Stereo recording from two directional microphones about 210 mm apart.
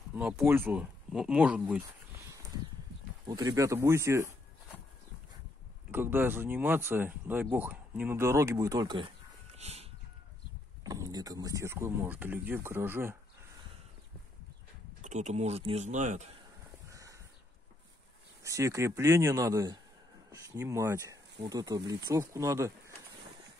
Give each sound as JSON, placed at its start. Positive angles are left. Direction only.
{"t": 0.1, "sound": "speech", "side_deg": -5}
{"t": 3.3, "sound": "speech", "side_deg": -15}
{"t": 5.9, "sound": "speech", "side_deg": -10}
{"t": 10.8, "sound": "speech", "side_deg": -20}
{"t": 15.0, "sound": "speech", "side_deg": -35}
{"t": 16.9, "sound": "crow", "side_deg": -15}
{"t": 18.4, "sound": "speech", "side_deg": -15}